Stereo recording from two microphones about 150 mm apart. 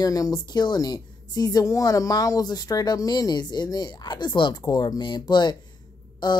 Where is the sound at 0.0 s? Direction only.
25° left (ahead or behind).